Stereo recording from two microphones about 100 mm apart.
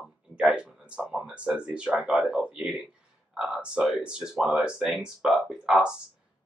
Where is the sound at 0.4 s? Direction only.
10° right (ahead or behind).